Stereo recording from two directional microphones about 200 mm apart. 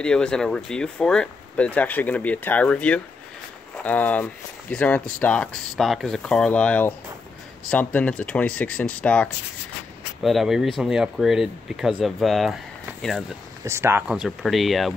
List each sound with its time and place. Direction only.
0.0 s speech: 5° left (ahead or behind)
13.7 s speech: 15° right (ahead or behind)